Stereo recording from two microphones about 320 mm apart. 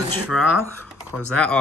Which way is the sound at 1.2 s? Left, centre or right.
Centre.